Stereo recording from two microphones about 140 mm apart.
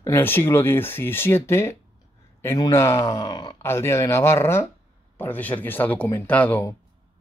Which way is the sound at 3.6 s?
15° left (ahead or behind).